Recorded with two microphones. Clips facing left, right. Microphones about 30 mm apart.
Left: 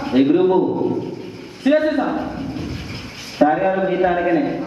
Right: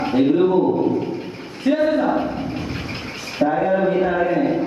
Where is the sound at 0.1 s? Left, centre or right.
Centre.